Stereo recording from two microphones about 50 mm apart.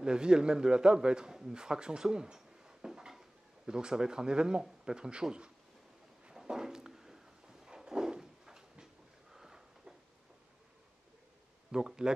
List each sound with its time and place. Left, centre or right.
0.0 s a man's voice: centre
6.4 s a sound: centre
11.7 s speech: centre